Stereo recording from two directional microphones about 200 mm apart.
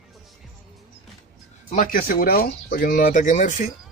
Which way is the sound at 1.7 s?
45° left (ahead or behind).